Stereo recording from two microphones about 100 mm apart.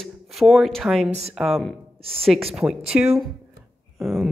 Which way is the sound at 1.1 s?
90° right.